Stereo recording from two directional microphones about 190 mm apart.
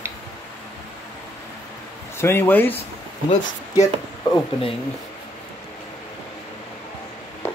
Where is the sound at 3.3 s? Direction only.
40° left (ahead or behind).